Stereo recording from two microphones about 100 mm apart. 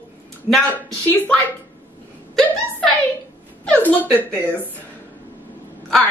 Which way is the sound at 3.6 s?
15° left (ahead or behind).